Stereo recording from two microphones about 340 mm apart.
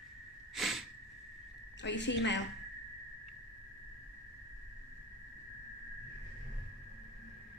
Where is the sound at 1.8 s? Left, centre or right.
Left.